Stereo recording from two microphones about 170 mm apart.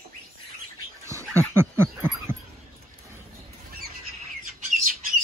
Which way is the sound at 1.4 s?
15° right (ahead or behind).